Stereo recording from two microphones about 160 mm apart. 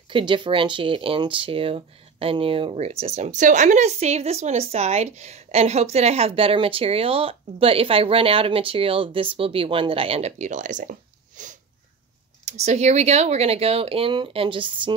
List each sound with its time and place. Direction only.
0.1 s speech: 30° right (ahead or behind)